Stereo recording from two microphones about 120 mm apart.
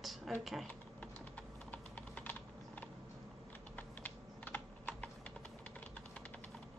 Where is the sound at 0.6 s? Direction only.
10° left (ahead or behind).